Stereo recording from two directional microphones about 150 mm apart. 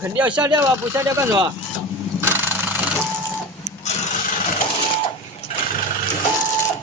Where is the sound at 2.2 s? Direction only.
15° right (ahead or behind).